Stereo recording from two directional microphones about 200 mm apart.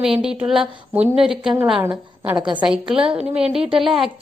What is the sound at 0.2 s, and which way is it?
A woman's voice, 5° right (ahead or behind).